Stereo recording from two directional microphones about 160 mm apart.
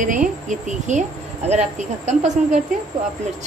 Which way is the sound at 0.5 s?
50° right (ahead or behind).